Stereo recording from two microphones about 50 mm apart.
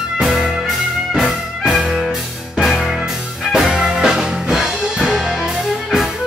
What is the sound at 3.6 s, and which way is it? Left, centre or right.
Music, centre.